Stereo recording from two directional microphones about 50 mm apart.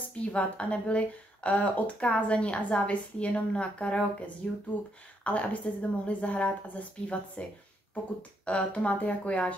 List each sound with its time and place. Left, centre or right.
0.3 s a woman's voice: left
5.2 s a woman's voice: left